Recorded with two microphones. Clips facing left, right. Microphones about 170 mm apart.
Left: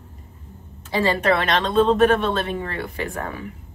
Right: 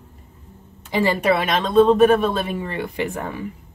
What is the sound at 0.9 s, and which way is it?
A woman's voice, 15° right (ahead or behind).